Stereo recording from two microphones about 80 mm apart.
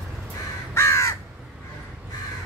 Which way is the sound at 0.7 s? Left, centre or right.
Left.